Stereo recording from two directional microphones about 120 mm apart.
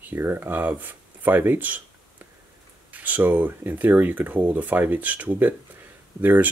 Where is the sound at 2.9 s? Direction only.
15° right (ahead or behind).